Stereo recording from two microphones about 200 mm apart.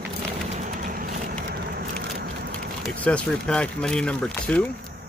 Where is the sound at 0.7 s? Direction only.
45° right (ahead or behind).